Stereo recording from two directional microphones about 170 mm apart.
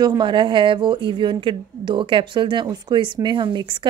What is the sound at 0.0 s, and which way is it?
A woman's voice, 25° right (ahead or behind).